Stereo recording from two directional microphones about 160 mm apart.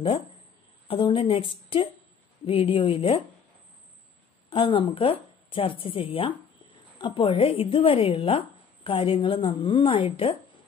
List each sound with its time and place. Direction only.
0.8 s a woman's voice: 35° left (ahead or behind)
4.5 s a woman's voice: 30° left (ahead or behind)